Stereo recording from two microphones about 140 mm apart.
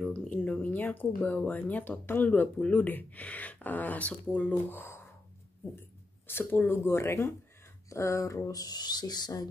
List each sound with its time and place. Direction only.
0.1 s speech: 10° left (ahead or behind)
6.2 s speech: 15° left (ahead or behind)